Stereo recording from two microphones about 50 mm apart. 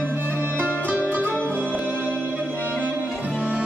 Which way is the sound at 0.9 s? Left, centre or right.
Right.